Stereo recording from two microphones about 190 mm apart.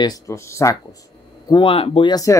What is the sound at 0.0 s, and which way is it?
Speech, 15° left (ahead or behind).